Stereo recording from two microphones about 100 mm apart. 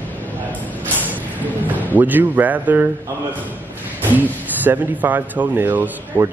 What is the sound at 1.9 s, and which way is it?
Speech, 20° right (ahead or behind).